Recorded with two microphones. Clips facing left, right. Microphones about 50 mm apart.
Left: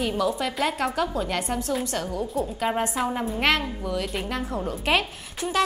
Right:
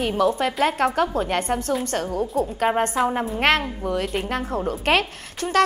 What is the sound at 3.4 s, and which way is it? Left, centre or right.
A woman's voice, right.